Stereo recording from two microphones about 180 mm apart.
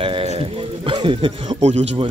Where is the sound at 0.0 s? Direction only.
30° right (ahead or behind).